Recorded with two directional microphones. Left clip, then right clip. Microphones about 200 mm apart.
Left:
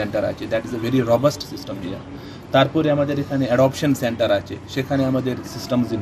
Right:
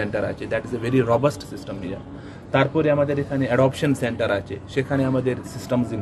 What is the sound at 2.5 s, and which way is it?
Speech, 25° right (ahead or behind).